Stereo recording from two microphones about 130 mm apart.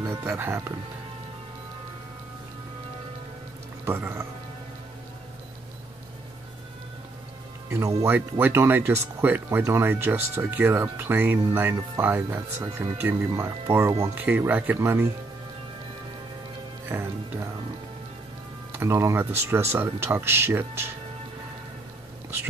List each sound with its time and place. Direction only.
0.0 s speech: 20° right (ahead or behind)
3.8 s speech: 15° right (ahead or behind)
7.7 s speech: 20° right (ahead or behind)
16.9 s speech: 20° right (ahead or behind)
18.7 s speech: 20° right (ahead or behind)